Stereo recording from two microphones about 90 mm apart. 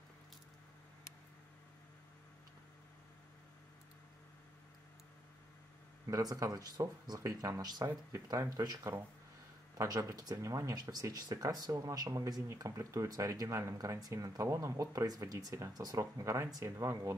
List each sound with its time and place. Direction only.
6.0 s speech: 40° right (ahead or behind)